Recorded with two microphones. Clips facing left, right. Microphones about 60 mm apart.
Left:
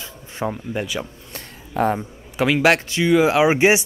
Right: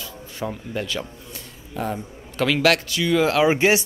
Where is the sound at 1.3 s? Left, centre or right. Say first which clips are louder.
Left 4 dB; left.